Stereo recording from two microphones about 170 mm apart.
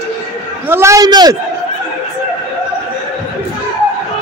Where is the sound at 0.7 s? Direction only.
15° right (ahead or behind).